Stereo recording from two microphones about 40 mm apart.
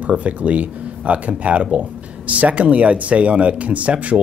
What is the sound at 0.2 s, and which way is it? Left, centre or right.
Speech, right.